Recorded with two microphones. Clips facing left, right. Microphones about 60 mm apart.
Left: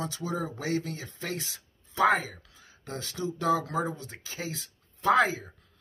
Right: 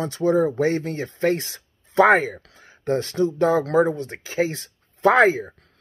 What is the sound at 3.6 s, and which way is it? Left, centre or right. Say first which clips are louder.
Speech: right 12 dB; right.